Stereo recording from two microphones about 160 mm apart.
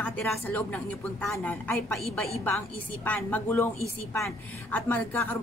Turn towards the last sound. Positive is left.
turn(degrees=10)  # may be behind; listen again after turning